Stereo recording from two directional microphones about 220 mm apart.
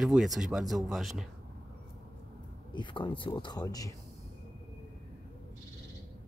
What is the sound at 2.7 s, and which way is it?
Speech, 20° left (ahead or behind).